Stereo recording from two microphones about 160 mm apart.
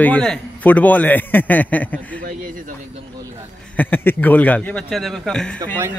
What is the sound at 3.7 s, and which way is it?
A man's voice, 10° left (ahead or behind).